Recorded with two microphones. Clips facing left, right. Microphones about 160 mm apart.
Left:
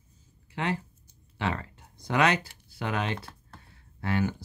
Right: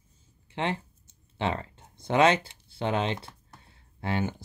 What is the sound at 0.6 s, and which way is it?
Speech, 25° right (ahead or behind).